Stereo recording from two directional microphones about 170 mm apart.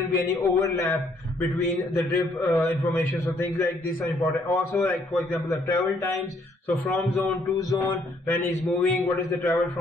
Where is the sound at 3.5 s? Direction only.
20° left (ahead or behind).